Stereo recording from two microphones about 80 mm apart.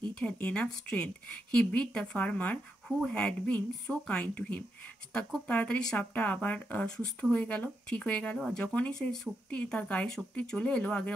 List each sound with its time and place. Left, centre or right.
0.1 s speech: centre